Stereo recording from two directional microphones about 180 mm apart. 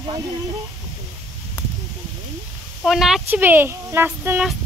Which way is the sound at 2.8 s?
Centre (ahead or behind).